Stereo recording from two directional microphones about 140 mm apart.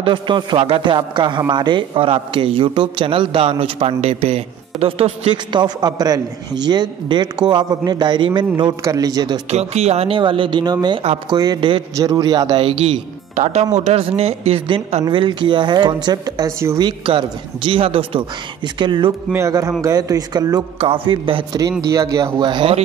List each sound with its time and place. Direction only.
0.0 s a man's voice: 35° right (ahead or behind)
5.3 s a man's voice: 35° right (ahead or behind)
9.5 s a man's voice: 50° right (ahead or behind); by 12.6 s 30° right (ahead or behind)
12.6 s speech: 40° right (ahead or behind)
13.4 s speech: 55° right (ahead or behind)
15.0 s a man's voice: 35° right (ahead or behind)
16.8 s a man's voice: 35° right (ahead or behind)
19.3 s speech: 20° right (ahead or behind)
20.8 s a man's voice: 40° right (ahead or behind)
21.9 s speech: 25° right (ahead or behind)